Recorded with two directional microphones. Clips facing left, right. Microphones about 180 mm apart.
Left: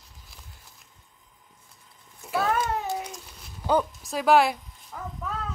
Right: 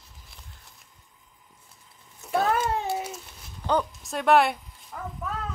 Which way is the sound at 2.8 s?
5° right (ahead or behind).